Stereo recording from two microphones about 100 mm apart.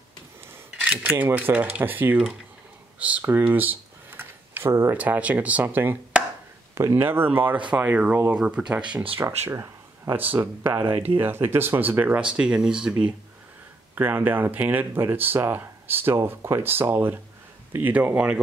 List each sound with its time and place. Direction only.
0.8 s speech: 20° right (ahead or behind)
6.7 s speech: 30° right (ahead or behind)
7.1 s speech: 20° right (ahead or behind)
9.5 s a sound: 35° right (ahead or behind)
10.1 s speech: 20° right (ahead or behind)
13.9 s speech: 20° right (ahead or behind)